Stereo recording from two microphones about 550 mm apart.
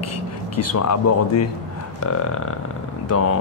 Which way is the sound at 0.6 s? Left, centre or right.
Left.